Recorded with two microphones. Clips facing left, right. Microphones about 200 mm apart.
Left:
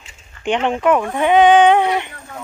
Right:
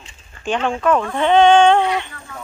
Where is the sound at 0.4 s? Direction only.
20° left (ahead or behind).